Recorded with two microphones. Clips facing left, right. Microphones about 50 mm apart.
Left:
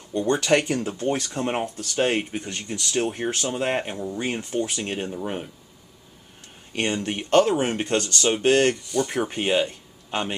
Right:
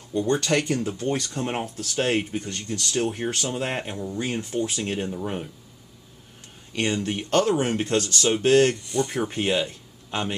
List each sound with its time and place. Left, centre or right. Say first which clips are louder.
0.1 s speech: even; centre
0.4 s speech: left 2 dB; centre
6.7 s speech: even; left
9.7 s a sound: left 2 dB; centre